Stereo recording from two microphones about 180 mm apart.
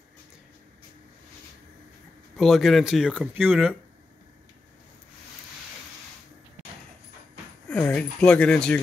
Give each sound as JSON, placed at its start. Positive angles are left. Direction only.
{"t": 2.3, "sound": "speech", "side_deg": 0}
{"t": 7.7, "sound": "speech", "side_deg": 10}